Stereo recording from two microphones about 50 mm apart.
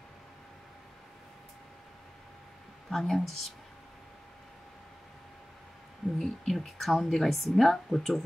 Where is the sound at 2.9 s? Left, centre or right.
Centre.